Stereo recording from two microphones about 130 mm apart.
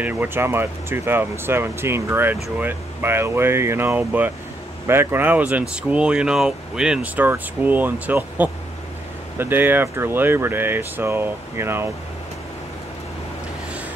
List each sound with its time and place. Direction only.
0.0 s speech: 15° right (ahead or behind)